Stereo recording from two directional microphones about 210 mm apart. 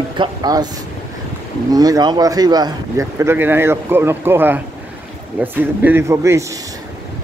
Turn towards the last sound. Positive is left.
turn(degrees=-15)  # may be behind; listen again after turning